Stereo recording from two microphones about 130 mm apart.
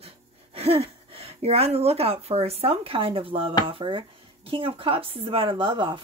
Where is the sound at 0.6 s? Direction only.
50° right (ahead or behind).